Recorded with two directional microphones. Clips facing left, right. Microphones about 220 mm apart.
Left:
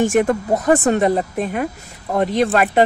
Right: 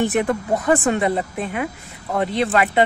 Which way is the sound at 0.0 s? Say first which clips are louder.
Left 4 dB; 45° left (ahead or behind).